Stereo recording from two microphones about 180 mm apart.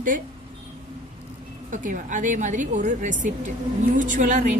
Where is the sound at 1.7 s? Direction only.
45° right (ahead or behind).